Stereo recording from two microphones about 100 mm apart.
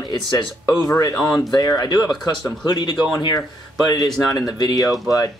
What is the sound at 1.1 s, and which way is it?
Mantra, 5° left (ahead or behind).